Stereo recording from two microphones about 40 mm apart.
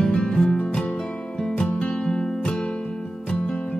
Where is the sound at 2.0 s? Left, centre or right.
Centre.